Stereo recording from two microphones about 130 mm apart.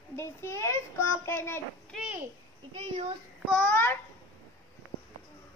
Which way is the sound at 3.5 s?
10° left (ahead or behind).